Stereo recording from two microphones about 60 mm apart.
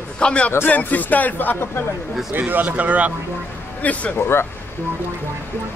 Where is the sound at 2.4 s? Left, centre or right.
Right.